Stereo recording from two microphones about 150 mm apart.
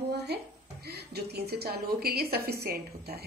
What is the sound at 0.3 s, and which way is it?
A woman's voice, 90° right.